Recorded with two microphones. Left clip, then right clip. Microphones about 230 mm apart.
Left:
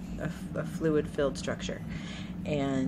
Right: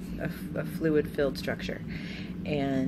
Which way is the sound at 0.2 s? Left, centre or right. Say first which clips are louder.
Right 1 dB; centre.